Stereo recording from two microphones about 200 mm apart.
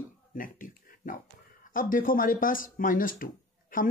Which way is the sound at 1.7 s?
45° left (ahead or behind).